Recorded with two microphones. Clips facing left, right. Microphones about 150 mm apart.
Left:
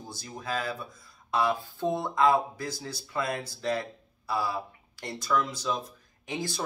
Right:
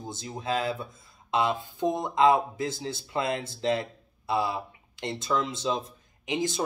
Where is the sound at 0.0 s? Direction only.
20° right (ahead or behind).